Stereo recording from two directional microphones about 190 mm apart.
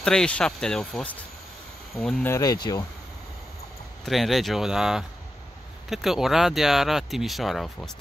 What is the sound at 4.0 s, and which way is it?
Speech, centre (ahead or behind).